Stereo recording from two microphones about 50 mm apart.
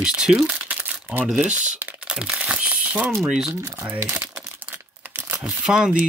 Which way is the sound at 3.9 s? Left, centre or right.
Right.